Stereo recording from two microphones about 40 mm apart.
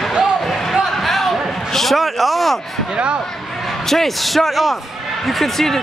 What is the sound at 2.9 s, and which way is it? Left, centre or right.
Speech, right.